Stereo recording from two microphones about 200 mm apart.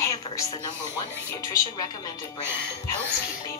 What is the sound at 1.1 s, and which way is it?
Speech, 15° left (ahead or behind).